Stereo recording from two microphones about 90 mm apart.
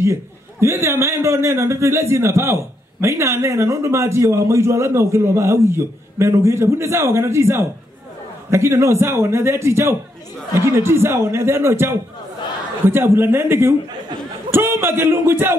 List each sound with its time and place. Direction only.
0.0 s a man's voice: 30° right (ahead or behind)